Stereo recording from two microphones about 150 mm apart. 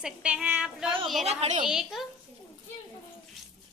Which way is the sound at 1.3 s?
45° right (ahead or behind).